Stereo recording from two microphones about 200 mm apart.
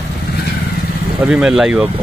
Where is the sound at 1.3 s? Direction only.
5° right (ahead or behind).